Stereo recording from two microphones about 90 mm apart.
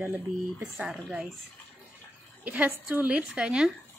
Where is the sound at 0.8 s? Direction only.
10° right (ahead or behind).